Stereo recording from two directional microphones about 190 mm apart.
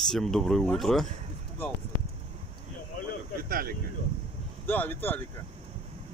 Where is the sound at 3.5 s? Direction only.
50° right (ahead or behind).